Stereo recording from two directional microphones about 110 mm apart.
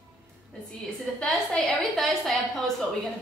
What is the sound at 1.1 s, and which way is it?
Speech, 5° left (ahead or behind).